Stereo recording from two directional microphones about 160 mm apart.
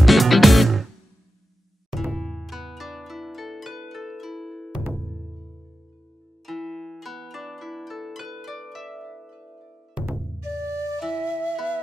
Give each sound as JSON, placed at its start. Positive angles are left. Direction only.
{"t": 0.0, "sound": "music", "side_deg": 0}
{"t": 1.9, "sound": "harp", "side_deg": 0}
{"t": 4.9, "sound": "music", "side_deg": 0}
{"t": 6.4, "sound": "harp", "side_deg": 0}
{"t": 10.0, "sound": "music", "side_deg": -15}
{"t": 11.0, "sound": "flute", "side_deg": -5}